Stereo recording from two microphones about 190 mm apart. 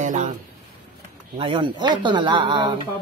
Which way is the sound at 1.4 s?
25° right (ahead or behind).